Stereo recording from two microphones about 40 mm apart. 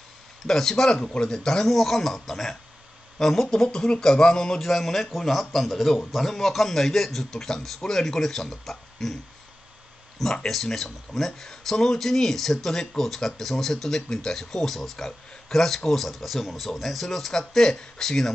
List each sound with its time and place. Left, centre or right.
0.5 s speech: centre
1.7 s speech: centre
4.6 s speech: centre
10.4 s speech: centre